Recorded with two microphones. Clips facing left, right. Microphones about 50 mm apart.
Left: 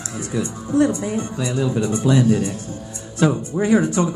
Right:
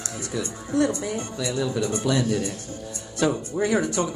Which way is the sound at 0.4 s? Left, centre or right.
Left.